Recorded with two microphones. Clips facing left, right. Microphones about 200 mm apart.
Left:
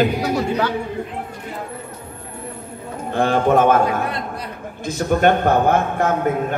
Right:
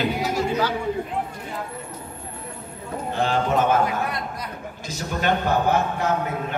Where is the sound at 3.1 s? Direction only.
50° left (ahead or behind).